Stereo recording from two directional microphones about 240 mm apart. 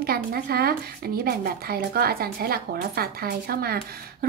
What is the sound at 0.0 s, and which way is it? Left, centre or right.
Speech, right.